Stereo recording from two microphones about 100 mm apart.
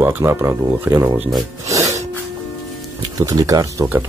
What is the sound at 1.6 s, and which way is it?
Snort, 35° right (ahead or behind).